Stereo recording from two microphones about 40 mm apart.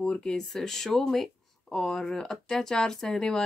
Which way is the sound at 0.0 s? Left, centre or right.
Left.